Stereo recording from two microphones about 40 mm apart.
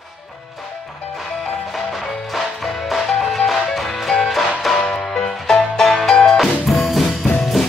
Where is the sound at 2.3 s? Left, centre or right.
Centre.